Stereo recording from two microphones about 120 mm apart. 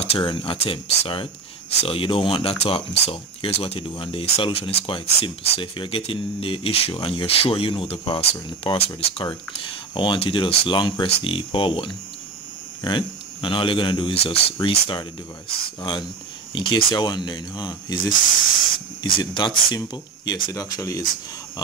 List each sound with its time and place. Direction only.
0.2 s speech: 45° left (ahead or behind)